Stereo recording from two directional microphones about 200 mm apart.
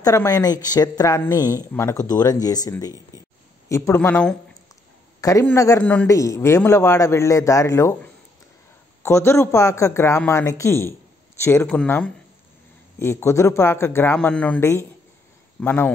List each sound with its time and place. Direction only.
0.0 s a woman's voice: 15° left (ahead or behind)